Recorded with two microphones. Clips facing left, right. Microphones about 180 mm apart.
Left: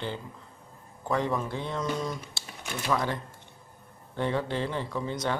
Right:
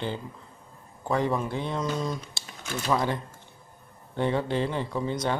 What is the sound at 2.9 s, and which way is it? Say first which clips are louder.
Speech: right 2 dB; 20° right (ahead or behind).